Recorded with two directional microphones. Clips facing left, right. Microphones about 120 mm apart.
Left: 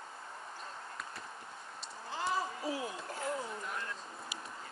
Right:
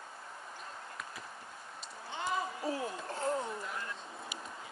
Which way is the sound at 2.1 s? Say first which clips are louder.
Even; centre (ahead or behind).